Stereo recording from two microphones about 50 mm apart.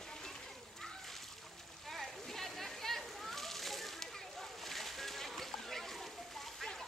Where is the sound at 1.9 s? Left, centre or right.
Centre.